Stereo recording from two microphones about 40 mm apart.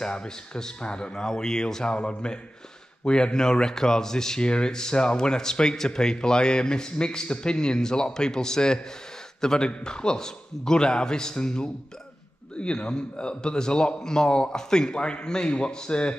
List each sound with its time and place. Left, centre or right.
0.0 s a man's voice: left